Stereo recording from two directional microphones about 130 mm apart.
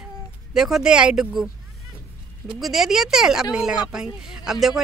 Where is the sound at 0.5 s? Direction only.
5° right (ahead or behind).